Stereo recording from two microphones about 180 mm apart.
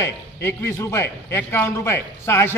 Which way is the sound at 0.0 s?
15° left (ahead or behind).